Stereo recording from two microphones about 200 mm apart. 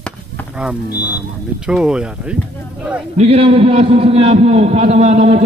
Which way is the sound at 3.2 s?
30° right (ahead or behind).